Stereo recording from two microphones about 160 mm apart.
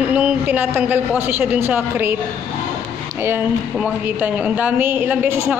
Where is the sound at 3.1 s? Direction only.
15° right (ahead or behind).